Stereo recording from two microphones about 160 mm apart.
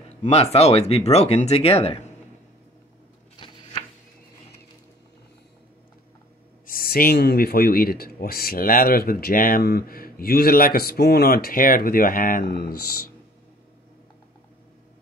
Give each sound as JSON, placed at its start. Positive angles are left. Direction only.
{"t": 0.2, "sound": "speech", "side_deg": 40}
{"t": 3.3, "sound": "a sound", "side_deg": 30}
{"t": 6.6, "sound": "speech", "side_deg": 65}